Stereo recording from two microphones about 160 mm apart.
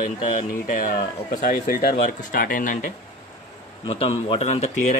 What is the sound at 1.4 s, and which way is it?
Speech, 65° left (ahead or behind).